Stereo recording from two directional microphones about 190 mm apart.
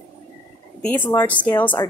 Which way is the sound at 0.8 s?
10° left (ahead or behind).